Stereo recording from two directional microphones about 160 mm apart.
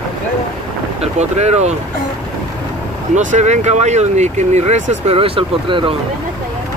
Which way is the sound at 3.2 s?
50° right (ahead or behind).